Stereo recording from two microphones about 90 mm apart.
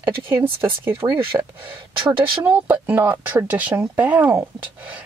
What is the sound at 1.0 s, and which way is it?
Speech, 35° right (ahead or behind).